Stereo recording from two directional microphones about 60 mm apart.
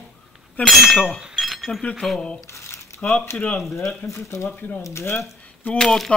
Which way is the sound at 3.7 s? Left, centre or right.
Left.